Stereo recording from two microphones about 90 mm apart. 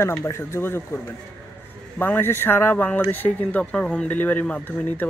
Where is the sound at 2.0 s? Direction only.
25° left (ahead or behind).